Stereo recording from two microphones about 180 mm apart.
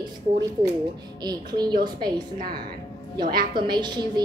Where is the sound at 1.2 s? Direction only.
25° right (ahead or behind).